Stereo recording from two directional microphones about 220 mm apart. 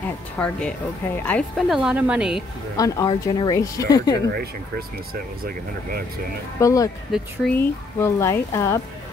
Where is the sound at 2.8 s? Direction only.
15° left (ahead or behind).